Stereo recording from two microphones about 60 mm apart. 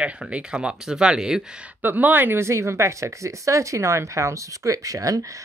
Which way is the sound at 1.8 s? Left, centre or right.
Right.